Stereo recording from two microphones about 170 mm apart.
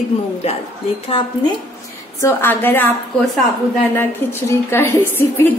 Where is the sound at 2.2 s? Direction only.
10° left (ahead or behind).